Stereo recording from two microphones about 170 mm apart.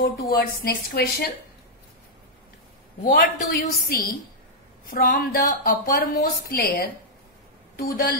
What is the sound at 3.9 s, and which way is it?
A woman's voice, 60° left (ahead or behind).